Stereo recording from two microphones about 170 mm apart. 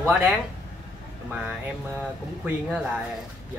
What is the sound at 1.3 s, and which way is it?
Speech, 5° right (ahead or behind).